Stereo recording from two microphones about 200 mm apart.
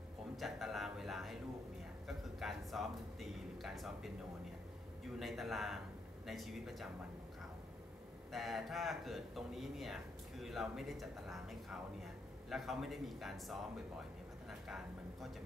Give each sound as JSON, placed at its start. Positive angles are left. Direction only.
{"t": 0.4, "sound": "a sound", "side_deg": 0}
{"t": 5.2, "sound": "speech", "side_deg": 0}
{"t": 8.3, "sound": "speech", "side_deg": 0}